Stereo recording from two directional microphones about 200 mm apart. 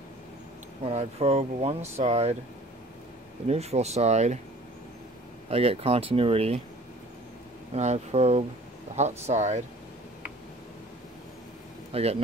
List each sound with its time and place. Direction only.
0.8 s speech: 30° right (ahead or behind)
3.4 s speech: 30° right (ahead or behind)
5.5 s speech: 30° right (ahead or behind)
7.7 s speech: 35° right (ahead or behind)
11.9 s speech: 30° right (ahead or behind)